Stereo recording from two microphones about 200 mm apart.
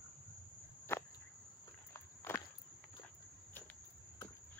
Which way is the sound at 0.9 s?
10° left (ahead or behind).